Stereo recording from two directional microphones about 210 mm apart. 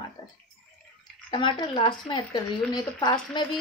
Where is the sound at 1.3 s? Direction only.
25° left (ahead or behind).